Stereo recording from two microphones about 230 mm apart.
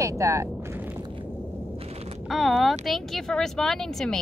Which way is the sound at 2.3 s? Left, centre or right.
Centre.